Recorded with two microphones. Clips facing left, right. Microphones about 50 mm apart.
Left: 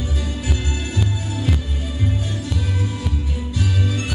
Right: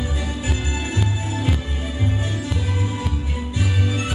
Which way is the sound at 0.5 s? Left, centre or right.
Centre.